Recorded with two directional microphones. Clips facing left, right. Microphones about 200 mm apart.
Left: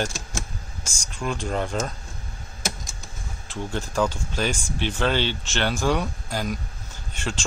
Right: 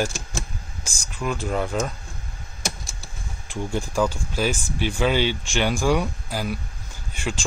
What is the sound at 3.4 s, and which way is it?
Speech, 10° right (ahead or behind).